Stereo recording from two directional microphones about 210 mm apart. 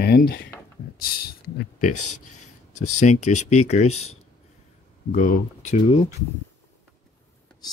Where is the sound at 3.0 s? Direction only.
35° left (ahead or behind).